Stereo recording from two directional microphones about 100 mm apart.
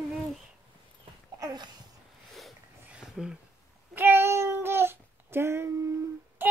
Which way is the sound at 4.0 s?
25° right (ahead or behind).